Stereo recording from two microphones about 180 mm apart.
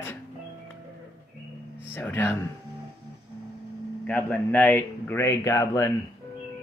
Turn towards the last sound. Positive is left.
turn(degrees=15)  # may be behind; listen again after turning